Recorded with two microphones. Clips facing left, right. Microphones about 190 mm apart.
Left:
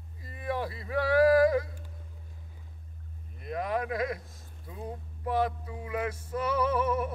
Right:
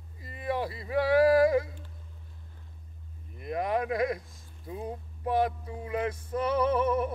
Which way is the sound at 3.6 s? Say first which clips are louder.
Right 3 dB; 30° right (ahead or behind).